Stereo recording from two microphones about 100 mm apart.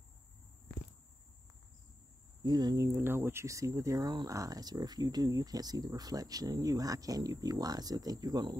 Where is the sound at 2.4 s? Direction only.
45° right (ahead or behind).